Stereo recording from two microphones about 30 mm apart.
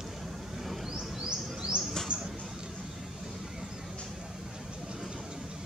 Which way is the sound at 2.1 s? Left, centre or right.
Right.